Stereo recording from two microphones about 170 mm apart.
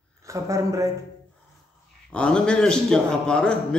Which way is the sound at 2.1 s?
5° left (ahead or behind).